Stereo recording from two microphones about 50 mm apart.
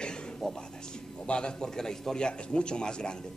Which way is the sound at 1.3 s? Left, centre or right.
Centre.